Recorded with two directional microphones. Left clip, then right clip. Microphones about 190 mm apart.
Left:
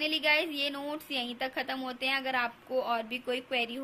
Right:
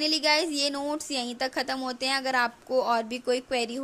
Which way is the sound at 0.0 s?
45° right (ahead or behind).